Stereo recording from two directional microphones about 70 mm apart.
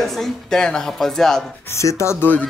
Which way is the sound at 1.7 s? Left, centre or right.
Left.